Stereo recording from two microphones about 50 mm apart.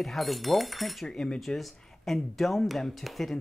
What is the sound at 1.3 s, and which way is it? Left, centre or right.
Speech, centre.